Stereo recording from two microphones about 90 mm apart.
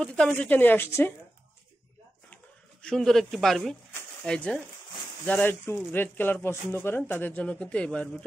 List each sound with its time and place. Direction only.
0.3 s speech: 20° left (ahead or behind)
2.8 s speech: 5° left (ahead or behind)
5.2 s speech: 20° left (ahead or behind)